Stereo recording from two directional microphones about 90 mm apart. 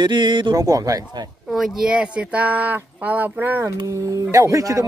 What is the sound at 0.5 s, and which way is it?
Speech, 40° right (ahead or behind).